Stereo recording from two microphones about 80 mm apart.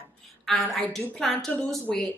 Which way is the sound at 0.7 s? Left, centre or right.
Centre.